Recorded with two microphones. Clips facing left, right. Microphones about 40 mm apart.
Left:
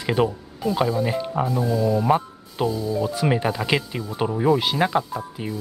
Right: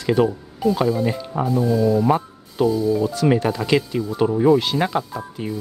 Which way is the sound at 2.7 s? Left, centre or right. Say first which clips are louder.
Right 6 dB; centre.